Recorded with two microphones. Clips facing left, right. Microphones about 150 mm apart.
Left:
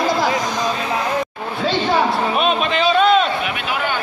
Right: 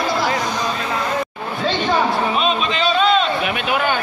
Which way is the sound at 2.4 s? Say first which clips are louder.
Left 2 dB; 55° left (ahead or behind).